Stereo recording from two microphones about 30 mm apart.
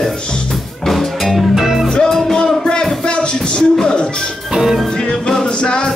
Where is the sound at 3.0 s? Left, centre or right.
Left.